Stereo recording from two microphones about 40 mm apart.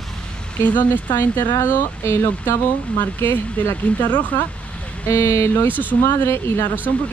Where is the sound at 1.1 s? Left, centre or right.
Left.